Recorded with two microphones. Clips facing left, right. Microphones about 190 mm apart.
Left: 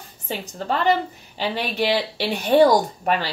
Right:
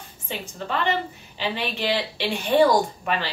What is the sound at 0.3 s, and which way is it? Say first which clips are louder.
Speech: left 4 dB; 40° left (ahead or behind).